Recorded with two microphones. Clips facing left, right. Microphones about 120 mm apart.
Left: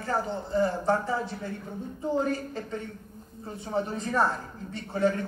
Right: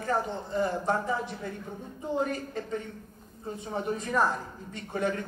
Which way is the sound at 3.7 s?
30° left (ahead or behind).